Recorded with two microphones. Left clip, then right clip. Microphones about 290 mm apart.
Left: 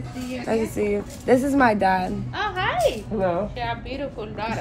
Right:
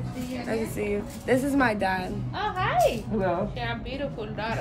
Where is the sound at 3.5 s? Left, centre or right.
Left.